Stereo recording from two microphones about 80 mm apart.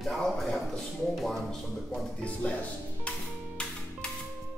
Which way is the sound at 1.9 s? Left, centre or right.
Centre.